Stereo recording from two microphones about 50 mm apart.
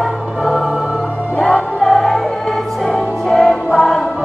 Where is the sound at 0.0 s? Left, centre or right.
Centre.